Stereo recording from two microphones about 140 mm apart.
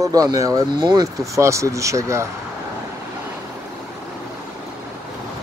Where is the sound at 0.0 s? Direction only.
25° right (ahead or behind).